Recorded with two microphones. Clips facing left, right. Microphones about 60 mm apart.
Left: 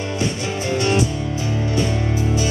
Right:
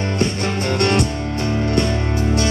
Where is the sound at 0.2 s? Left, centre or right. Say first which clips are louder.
Right 3 dB; right.